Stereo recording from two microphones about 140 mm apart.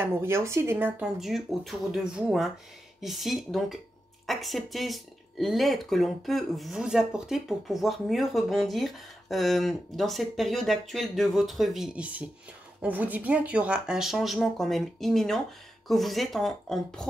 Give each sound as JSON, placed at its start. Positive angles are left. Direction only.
{"t": 0.0, "sound": "speech", "side_deg": -20}
{"t": 1.2, "sound": "speech", "side_deg": 0}